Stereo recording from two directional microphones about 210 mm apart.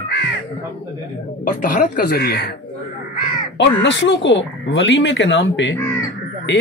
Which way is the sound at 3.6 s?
60° left (ahead or behind).